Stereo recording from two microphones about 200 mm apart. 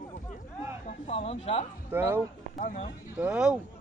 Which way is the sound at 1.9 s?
10° right (ahead or behind).